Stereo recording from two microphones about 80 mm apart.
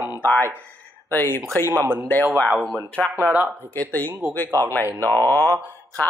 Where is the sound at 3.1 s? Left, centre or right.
Right.